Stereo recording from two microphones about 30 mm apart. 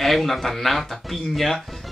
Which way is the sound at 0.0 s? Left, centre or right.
Centre.